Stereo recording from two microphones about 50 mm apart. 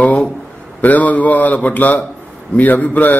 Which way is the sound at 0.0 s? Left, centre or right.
Left.